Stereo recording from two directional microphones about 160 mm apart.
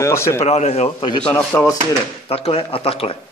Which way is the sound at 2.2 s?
40° left (ahead or behind).